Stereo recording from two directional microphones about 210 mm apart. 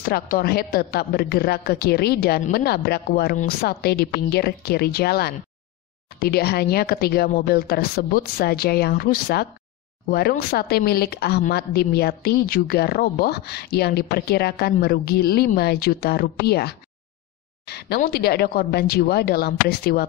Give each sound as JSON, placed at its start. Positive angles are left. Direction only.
{"t": 0.0, "sound": "speech", "side_deg": 45}